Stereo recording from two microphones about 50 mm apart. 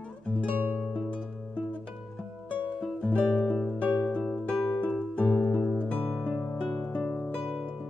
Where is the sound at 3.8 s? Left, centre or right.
Left.